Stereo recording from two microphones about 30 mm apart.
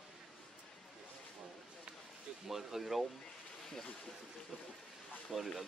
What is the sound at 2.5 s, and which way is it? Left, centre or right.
Speech, centre.